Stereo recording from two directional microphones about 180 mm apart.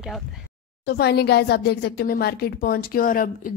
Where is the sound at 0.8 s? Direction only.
60° left (ahead or behind).